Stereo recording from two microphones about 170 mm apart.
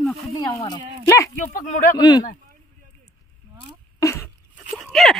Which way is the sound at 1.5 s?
50° left (ahead or behind).